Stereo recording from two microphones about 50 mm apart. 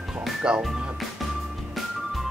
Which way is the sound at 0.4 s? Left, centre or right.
Centre.